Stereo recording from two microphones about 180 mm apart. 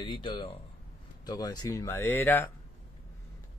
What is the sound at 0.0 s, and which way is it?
Speech, 25° left (ahead or behind).